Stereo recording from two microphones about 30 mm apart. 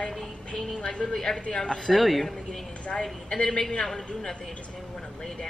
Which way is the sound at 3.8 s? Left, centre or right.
Left.